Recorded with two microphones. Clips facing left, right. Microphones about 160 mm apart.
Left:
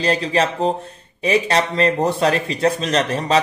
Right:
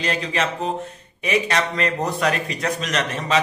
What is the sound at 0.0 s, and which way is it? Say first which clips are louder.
Speech: left 5 dB; 35° left (ahead or behind).